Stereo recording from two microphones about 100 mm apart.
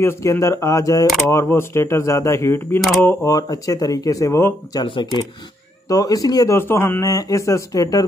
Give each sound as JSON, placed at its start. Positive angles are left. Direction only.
{"t": 0.0, "sound": "speech", "side_deg": 30}
{"t": 3.3, "sound": "speech", "side_deg": 35}
{"t": 4.8, "sound": "speech", "side_deg": 55}
{"t": 5.9, "sound": "speech", "side_deg": 35}
{"t": 6.5, "sound": "speech", "side_deg": 25}
{"t": 7.1, "sound": "speech", "side_deg": 35}